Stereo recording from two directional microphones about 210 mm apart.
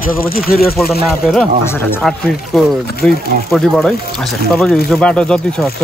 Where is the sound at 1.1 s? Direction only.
Centre (ahead or behind).